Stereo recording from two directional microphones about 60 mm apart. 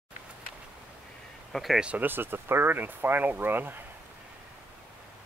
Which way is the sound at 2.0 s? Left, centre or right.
Right.